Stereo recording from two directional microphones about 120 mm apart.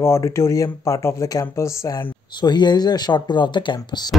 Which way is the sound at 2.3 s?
35° left (ahead or behind).